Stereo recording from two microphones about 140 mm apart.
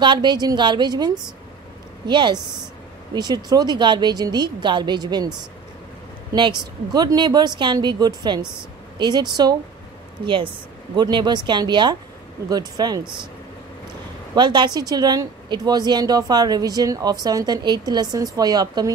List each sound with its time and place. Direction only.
0.0 s speech: 35° right (ahead or behind)
6.3 s speech: 30° right (ahead or behind)
14.3 s speech: 35° right (ahead or behind)